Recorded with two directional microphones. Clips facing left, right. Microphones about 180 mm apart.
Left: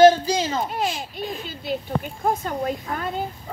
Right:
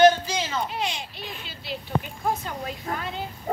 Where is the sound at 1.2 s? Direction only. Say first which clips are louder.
Left 8 dB; 40° left (ahead or behind).